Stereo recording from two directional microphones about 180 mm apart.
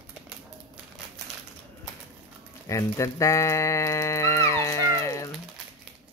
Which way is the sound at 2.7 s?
15° left (ahead or behind).